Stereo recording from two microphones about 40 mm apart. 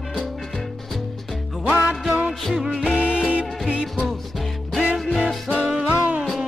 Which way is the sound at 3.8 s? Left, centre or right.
Centre.